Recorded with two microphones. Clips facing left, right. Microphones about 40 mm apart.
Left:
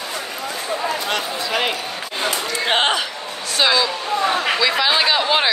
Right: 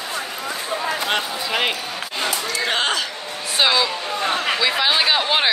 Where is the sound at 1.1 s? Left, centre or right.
Centre.